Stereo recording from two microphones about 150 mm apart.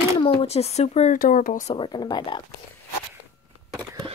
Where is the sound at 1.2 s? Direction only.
65° left (ahead or behind).